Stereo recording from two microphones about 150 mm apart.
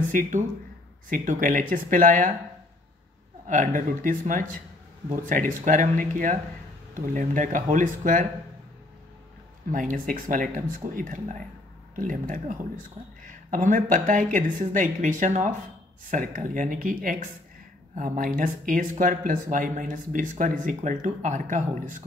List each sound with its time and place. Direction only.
0.1 s speech: 60° right (ahead or behind)
3.4 s speech: 60° right (ahead or behind)
9.7 s speech: 60° right (ahead or behind)